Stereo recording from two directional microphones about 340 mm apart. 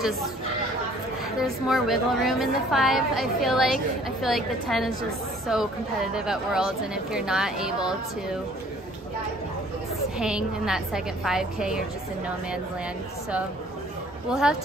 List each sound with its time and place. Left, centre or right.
1.4 s a woman's voice: centre
10.1 s a woman's voice: centre
14.3 s a woman's voice: centre